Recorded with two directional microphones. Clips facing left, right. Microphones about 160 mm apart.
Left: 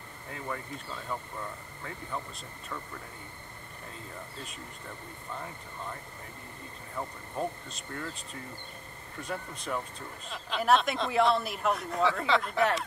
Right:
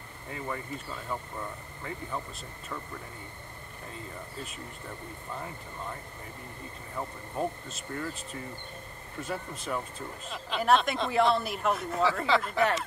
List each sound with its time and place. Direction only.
0.3 s speech: 5° right (ahead or behind)
7.0 s speech: 5° right (ahead or behind)